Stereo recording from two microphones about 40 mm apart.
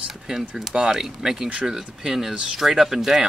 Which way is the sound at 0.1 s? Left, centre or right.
Centre.